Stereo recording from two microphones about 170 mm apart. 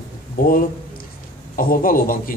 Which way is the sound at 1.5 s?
55° left (ahead or behind).